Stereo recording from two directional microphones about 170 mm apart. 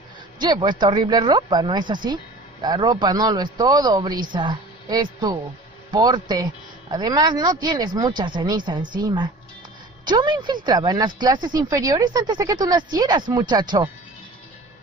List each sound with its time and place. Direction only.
0.4 s speech: 25° right (ahead or behind)